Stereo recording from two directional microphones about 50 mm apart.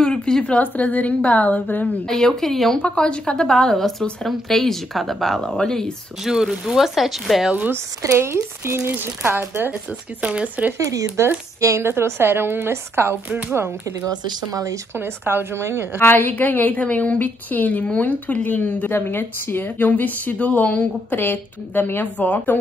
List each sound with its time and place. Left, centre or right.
0.0 s a woman's voice: centre
0.6 s speech: left
2.0 s a woman's voice: centre
3.0 s a woman's voice: centre
6.2 s speech: centre
8.0 s speech: right
10.2 s speech: right
11.1 s speech: right
15.0 s speech: right
16.0 s speech: left
18.9 s speech: left